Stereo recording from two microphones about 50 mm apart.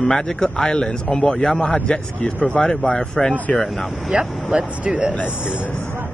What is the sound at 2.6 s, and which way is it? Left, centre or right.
Speech, centre.